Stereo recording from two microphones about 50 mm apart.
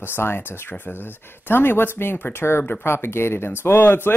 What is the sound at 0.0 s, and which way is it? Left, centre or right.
Speech, left.